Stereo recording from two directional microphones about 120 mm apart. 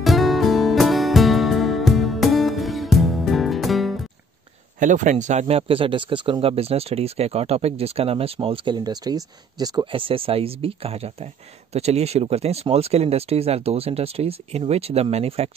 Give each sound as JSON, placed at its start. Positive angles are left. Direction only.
{"t": 0.0, "sound": "music", "side_deg": 0}
{"t": 4.7, "sound": "speech", "side_deg": -90}
{"t": 5.6, "sound": "speech", "side_deg": -50}
{"t": 9.9, "sound": "speech", "side_deg": -50}